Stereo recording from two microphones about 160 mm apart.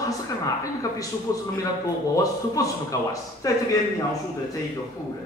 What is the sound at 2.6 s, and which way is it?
Speech, 20° left (ahead or behind).